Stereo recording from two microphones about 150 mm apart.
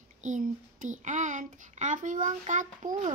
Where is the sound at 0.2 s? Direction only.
60° right (ahead or behind).